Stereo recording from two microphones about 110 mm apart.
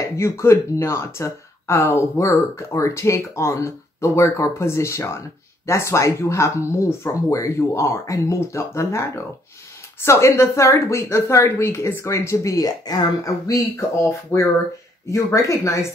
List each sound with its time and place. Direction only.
0.0 s speech: 25° left (ahead or behind)